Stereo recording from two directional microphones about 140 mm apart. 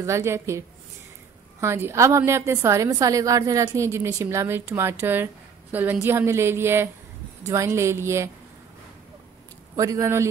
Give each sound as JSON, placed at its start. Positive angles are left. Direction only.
{"t": 0.0, "sound": "a woman's voice", "side_deg": -20}
{"t": 9.8, "sound": "a woman's voice", "side_deg": -25}